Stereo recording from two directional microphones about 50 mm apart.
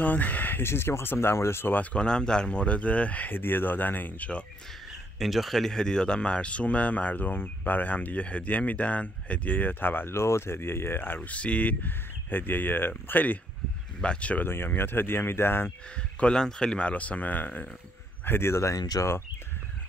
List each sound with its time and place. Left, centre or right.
0.0 s speech: left
0.6 s speech: left
1.7 s speech: left
2.0 s speech: centre; by 3.3 s left
3.3 s speech: left
5.2 s speech: centre
5.8 s speech: centre; by 10.1 s left
10.1 s speech: left
11.2 s speech: left
14.0 s speech: left
14.4 s speech: left
16.3 s speech: centre; by 17.6 s left
18.2 s speech: left